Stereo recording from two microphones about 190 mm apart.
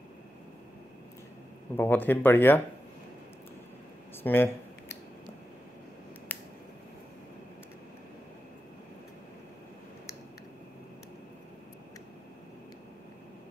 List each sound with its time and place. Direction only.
1.8 s speech: 10° left (ahead or behind)
4.2 s a sound: 10° left (ahead or behind)
6.3 s finger snapping: 10° left (ahead or behind)